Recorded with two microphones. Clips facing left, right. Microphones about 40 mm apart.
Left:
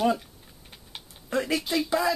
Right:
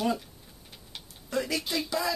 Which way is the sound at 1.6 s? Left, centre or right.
Centre.